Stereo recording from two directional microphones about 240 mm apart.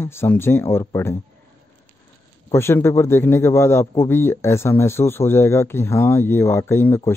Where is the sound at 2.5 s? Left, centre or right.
Centre.